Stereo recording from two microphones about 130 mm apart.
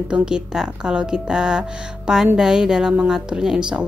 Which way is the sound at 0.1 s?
5° right (ahead or behind).